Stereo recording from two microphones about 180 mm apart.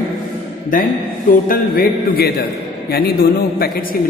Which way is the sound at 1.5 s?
55° left (ahead or behind).